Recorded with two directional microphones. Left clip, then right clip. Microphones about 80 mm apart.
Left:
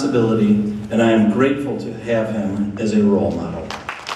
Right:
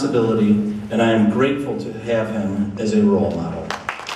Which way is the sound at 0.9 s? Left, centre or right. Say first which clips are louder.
Left 1 dB; centre.